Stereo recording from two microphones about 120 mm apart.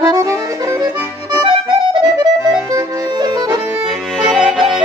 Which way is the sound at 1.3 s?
40° right (ahead or behind).